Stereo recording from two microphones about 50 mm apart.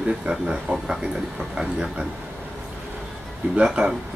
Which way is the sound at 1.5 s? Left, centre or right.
Centre.